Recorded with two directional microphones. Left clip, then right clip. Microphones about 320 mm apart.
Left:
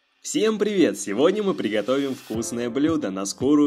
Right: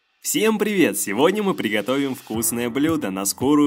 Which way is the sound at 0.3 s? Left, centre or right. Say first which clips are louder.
Right 2 dB; right.